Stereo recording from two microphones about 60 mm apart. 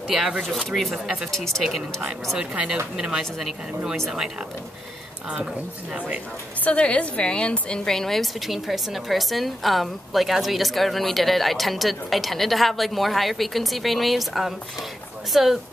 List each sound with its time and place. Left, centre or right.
0.4 s a woman's voice: centre
1.3 s speech: centre
1.6 s speech: centre
5.9 s a woman's voice: centre
6.6 s a woman's voice: centre